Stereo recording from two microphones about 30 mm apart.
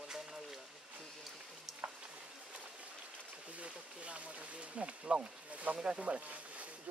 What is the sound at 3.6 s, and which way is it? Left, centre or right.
Speech, right.